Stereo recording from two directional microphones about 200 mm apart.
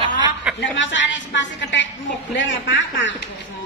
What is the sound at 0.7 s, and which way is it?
A woman's voice, 65° left (ahead or behind).